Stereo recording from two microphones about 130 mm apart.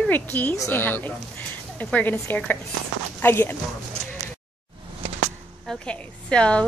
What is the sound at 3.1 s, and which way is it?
Speech, 15° left (ahead or behind).